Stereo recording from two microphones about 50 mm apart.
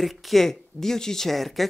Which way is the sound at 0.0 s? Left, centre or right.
Centre.